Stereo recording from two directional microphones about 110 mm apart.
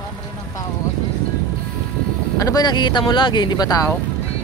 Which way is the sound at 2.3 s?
35° left (ahead or behind).